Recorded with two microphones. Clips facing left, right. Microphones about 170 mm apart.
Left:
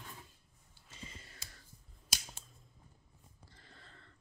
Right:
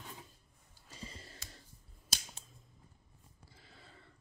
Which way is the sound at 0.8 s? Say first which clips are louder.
Right 3 dB; 35° right (ahead or behind).